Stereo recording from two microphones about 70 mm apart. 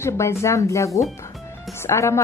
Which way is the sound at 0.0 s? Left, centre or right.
Left.